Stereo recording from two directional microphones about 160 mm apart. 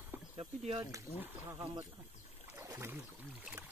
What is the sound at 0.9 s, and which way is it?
Speech, 15° right (ahead or behind).